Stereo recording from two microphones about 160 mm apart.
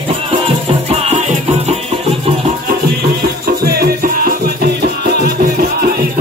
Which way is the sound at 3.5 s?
70° right (ahead or behind).